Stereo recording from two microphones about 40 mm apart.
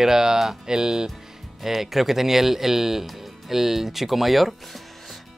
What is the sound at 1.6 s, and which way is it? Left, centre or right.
Speech, centre.